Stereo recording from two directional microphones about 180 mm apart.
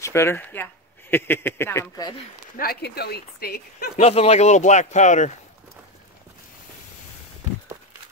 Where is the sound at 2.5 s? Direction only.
60° left (ahead or behind).